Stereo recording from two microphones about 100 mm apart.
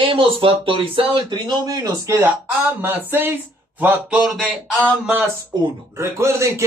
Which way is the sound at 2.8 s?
20° right (ahead or behind).